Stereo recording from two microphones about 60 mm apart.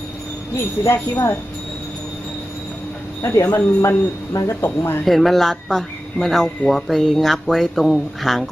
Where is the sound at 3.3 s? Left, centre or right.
Left.